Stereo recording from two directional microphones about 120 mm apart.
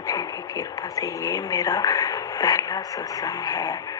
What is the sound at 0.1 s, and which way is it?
A woman's voice, 30° left (ahead or behind).